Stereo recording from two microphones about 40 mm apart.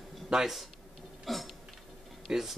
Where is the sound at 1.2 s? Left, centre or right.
Centre.